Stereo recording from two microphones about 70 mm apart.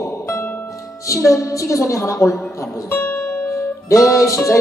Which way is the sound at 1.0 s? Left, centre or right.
Left.